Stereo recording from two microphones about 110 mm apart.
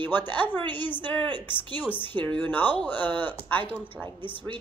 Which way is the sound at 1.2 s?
45° right (ahead or behind).